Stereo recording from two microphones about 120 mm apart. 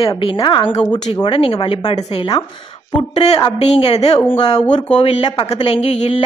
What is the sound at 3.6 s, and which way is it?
Speech, 55° left (ahead or behind).